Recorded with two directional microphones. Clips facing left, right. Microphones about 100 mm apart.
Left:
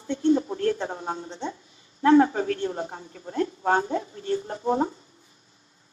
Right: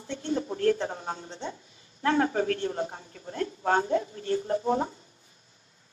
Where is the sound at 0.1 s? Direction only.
30° left (ahead or behind).